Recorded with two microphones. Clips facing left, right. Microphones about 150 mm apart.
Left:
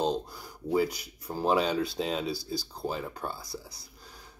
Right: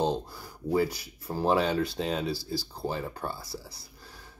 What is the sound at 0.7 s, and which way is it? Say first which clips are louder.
Speech: right 1 dB; 5° left (ahead or behind).